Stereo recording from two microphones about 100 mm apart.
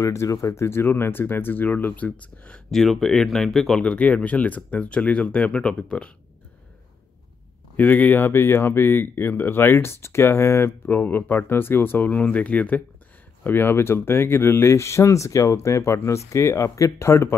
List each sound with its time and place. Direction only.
0.0 s speech: 30° left (ahead or behind); by 6.1 s 10° left (ahead or behind)
7.7 s speech: 15° left (ahead or behind)